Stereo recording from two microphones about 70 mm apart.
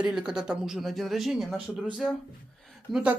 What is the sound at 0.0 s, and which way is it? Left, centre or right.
Speech, centre.